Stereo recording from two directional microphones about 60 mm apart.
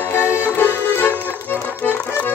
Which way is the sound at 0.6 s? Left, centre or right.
Left.